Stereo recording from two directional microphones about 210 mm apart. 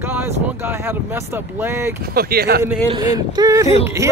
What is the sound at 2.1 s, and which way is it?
Speech, 50° right (ahead or behind).